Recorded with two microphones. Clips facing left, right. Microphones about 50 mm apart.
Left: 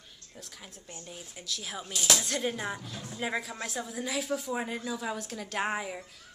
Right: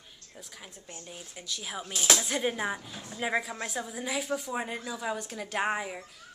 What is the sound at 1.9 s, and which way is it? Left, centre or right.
Speech, right.